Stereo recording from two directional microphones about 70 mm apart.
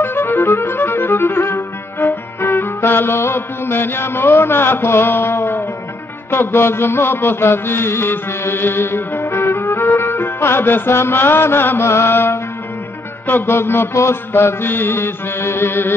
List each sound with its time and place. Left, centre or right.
0.0 s music: left
13.3 s mantra: left